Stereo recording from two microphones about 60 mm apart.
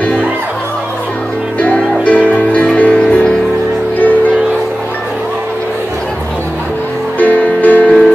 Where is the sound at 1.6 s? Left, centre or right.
Left.